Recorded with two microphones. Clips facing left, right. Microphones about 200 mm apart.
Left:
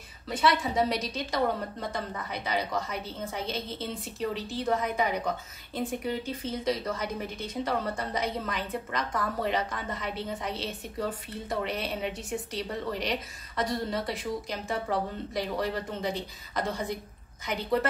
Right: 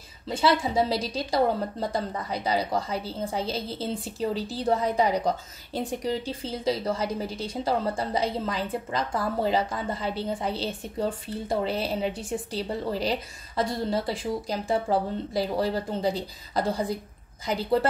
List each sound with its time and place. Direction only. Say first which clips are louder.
0.3 s a woman's voice: right 3 dB; 30° right (ahead or behind)